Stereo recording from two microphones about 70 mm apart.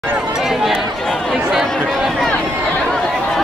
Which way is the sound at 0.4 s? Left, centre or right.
Centre.